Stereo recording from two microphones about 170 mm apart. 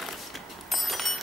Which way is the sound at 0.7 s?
Centre (ahead or behind).